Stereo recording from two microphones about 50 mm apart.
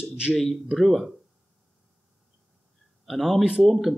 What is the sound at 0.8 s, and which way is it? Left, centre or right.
Speech, centre.